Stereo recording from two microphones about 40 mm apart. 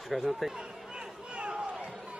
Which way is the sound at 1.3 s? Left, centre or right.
Right.